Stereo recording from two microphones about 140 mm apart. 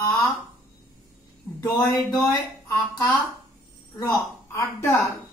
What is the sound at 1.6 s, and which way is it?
Speech, 30° left (ahead or behind).